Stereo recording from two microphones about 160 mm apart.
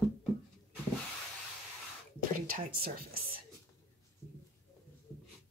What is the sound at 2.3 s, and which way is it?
Speech, 60° right (ahead or behind).